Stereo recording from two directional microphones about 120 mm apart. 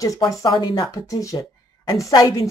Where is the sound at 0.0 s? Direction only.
30° left (ahead or behind).